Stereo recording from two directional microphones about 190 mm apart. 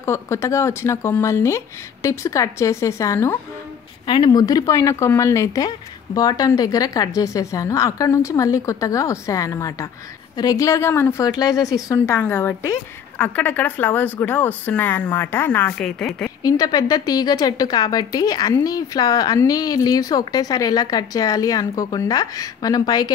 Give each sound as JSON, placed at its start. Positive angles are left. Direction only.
{"t": 0.0, "sound": "a woman's voice", "side_deg": 15}
{"t": 16.4, "sound": "a woman's voice", "side_deg": 20}